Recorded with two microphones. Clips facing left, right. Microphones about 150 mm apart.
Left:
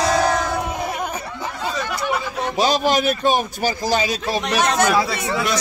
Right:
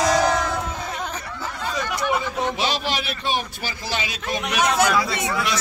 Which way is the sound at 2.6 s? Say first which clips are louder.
Left 7 dB; 45° left (ahead or behind).